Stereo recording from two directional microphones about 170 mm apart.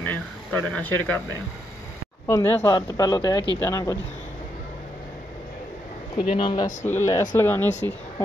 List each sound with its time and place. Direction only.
0.0 s speech: 10° left (ahead or behind)
2.2 s speech: 15° left (ahead or behind)
6.3 s speech: 25° left (ahead or behind)
6.9 s speech: 15° left (ahead or behind)
7.8 s speech: 25° right (ahead or behind)